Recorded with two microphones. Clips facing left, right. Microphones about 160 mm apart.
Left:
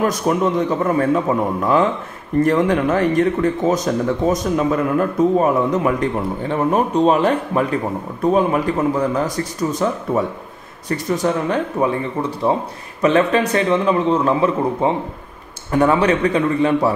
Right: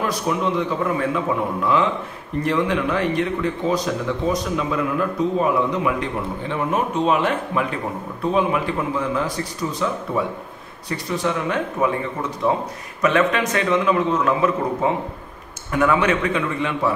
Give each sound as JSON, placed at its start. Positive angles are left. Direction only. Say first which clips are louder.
{"t": 0.0, "sound": "a man's voice", "louder": "left 5 dB", "side_deg": 45}